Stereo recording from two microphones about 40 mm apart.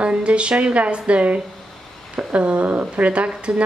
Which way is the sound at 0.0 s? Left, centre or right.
Right.